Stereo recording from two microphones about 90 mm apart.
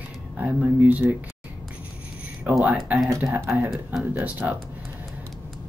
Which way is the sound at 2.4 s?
20° right (ahead or behind).